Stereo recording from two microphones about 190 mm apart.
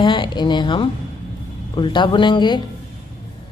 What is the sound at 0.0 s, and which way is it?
Speech, 25° left (ahead or behind).